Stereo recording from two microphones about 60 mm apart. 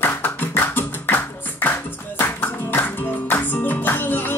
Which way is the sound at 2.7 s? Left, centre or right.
Left.